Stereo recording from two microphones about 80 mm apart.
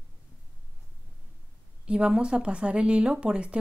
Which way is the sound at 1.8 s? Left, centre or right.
Centre.